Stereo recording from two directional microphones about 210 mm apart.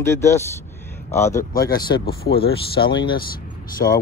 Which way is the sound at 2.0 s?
50° left (ahead or behind).